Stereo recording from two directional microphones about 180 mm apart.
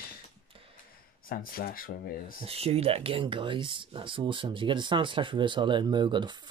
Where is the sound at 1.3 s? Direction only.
55° left (ahead or behind).